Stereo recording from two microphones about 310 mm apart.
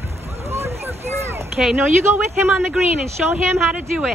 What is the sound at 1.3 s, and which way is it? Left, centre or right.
Speech, centre.